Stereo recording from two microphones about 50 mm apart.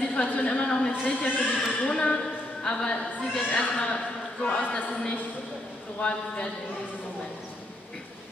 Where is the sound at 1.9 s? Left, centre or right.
Left.